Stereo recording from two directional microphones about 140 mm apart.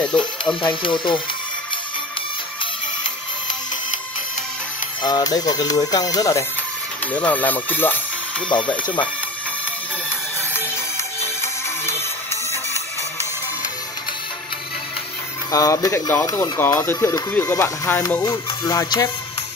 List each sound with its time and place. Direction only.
0.1 s speech: 35° left (ahead or behind)
5.0 s speech: 30° left (ahead or behind)
7.1 s speech: 10° left (ahead or behind)
11.1 s music: 20° left (ahead or behind)
15.5 s speech: 25° left (ahead or behind)
18.2 s speech: 25° left (ahead or behind)